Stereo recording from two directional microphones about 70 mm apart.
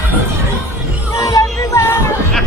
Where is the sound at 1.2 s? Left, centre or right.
Left.